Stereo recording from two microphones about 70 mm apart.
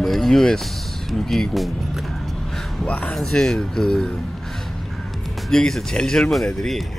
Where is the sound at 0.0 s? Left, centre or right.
Centre.